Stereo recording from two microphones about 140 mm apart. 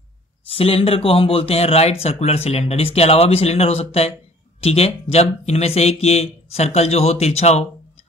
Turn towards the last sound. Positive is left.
turn(degrees=50)  # may be behind; listen again after turning